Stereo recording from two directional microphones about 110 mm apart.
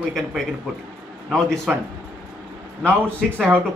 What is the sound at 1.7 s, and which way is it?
Speech, 10° right (ahead or behind).